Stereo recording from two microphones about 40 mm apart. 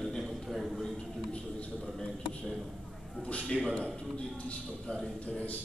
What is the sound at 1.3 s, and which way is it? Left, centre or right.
Speech, left.